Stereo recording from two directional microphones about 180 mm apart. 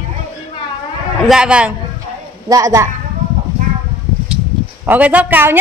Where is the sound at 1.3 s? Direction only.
5° right (ahead or behind).